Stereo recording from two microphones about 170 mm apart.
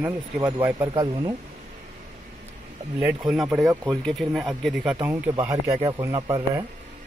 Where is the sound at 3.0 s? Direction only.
5° right (ahead or behind).